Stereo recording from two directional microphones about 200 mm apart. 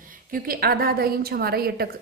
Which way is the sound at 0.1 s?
45° right (ahead or behind).